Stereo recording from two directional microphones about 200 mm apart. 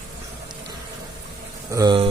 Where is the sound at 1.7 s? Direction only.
20° right (ahead or behind).